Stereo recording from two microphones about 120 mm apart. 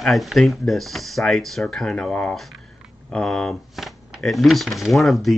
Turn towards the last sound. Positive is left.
turn(degrees=0)  # may be behind; listen again after turning